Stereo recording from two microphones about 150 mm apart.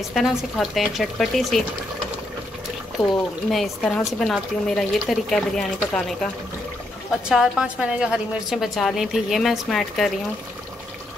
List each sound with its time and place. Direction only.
0.1 s a woman's voice: centre (ahead or behind)
3.4 s a woman's voice: centre (ahead or behind)